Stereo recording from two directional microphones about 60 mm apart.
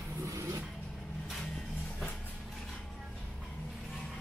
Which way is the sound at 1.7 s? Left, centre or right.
Left.